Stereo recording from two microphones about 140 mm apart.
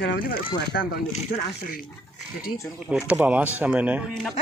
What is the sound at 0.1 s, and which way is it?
Speech, 90° left.